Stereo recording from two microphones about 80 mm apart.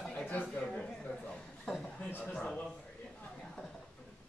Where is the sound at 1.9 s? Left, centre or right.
Left.